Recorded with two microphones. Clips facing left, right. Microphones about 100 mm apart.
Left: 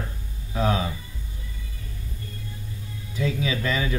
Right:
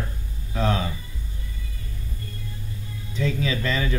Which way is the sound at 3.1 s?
10° left (ahead or behind).